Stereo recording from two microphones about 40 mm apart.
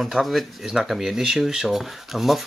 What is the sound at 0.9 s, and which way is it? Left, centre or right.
Speech, centre.